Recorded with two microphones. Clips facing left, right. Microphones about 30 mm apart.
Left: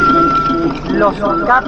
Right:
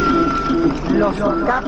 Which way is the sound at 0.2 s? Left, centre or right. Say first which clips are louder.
Left 6 dB; left.